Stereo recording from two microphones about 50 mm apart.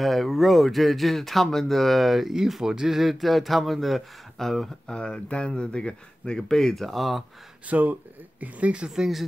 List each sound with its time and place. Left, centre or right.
0.0 s speech: centre
4.9 s speech: centre
6.5 s speech: centre
7.6 s speech: right
8.8 s speech: centre